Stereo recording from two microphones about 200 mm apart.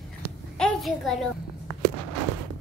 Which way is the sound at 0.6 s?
Centre (ahead or behind).